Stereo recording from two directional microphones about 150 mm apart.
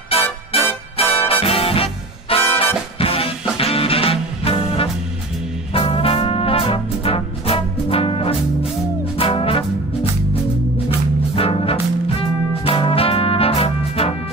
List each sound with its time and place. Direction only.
0.1 s music: 40° left (ahead or behind)
5.7 s brass instrument: 40° left (ahead or behind)
9.1 s music: 40° left (ahead or behind)
11.3 s music: 40° left (ahead or behind)